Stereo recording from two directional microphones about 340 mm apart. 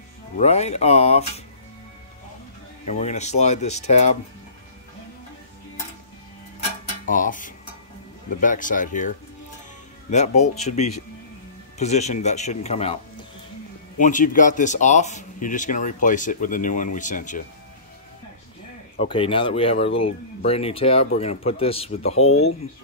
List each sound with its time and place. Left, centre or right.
0.4 s speech: centre
2.9 s speech: centre
7.1 s speech: left
10.1 s speech: centre
18.9 s speech: centre